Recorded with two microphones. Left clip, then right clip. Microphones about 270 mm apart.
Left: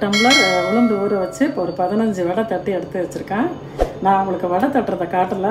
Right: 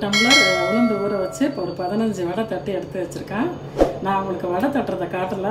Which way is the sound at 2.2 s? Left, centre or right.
Centre.